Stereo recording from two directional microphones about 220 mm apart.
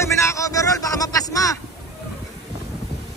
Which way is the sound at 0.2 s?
15° left (ahead or behind).